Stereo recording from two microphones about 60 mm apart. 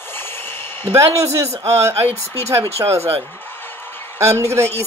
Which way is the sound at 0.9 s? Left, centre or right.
Right.